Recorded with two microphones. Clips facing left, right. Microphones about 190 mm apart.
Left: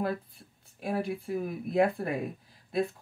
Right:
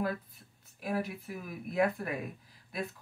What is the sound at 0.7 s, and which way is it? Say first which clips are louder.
Speech: left 3 dB; 25° left (ahead or behind).